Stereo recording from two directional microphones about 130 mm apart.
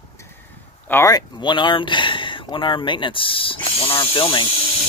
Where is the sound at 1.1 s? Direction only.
40° left (ahead or behind).